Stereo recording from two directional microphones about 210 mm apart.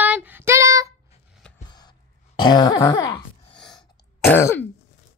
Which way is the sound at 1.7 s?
20° left (ahead or behind).